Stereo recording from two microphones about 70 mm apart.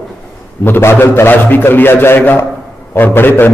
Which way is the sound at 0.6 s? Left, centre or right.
Left.